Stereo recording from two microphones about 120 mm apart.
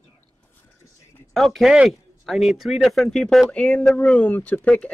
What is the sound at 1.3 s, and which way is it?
Speech, centre (ahead or behind).